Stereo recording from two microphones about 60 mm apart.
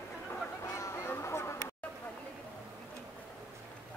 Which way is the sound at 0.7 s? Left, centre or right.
Left.